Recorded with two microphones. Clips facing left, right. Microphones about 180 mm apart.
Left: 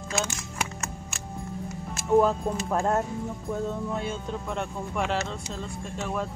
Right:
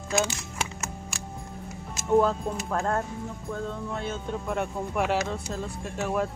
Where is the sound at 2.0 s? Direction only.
5° left (ahead or behind).